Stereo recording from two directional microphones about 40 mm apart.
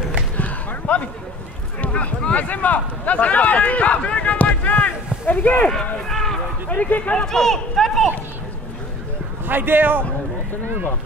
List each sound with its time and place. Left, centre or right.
0.4 s a sound: left
1.8 s speech: left
6.0 s a sound: centre
6.7 s speech: left
7.2 s speech: centre
9.5 s speech: right